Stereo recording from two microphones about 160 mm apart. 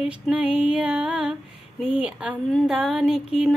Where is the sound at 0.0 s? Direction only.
5° right (ahead or behind).